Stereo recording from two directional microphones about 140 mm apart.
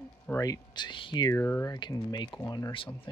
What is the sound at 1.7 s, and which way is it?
Speech, 30° left (ahead or behind).